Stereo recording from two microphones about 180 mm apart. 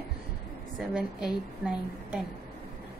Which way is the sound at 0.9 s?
5° right (ahead or behind).